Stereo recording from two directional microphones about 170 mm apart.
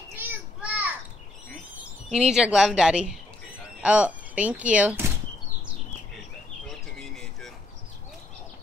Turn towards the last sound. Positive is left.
turn(degrees=0)  # may be behind; listen again after turning